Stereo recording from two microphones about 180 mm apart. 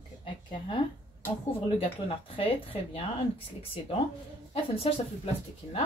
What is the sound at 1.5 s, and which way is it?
Speech, 30° left (ahead or behind).